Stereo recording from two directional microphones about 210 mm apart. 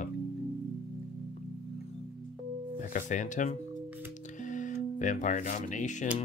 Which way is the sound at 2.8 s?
35° left (ahead or behind).